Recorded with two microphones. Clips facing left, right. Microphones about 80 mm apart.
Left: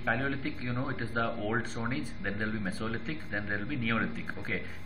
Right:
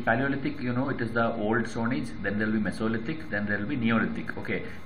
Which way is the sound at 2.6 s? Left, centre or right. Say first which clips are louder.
Right 7 dB; centre.